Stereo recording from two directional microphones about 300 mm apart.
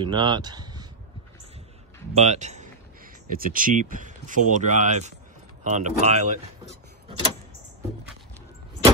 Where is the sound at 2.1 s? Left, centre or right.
Right.